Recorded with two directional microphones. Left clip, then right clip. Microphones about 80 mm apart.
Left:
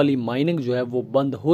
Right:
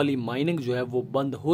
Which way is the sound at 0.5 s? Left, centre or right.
Left.